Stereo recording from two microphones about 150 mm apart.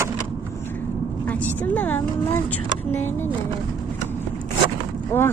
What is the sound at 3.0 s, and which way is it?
Speech, 15° left (ahead or behind).